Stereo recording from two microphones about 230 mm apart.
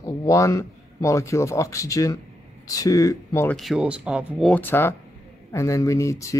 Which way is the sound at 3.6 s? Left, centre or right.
Centre.